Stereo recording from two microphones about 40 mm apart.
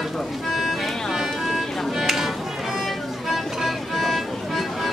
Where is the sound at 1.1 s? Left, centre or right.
Centre.